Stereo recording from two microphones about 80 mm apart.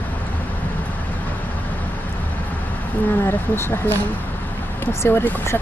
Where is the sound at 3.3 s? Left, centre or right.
Left.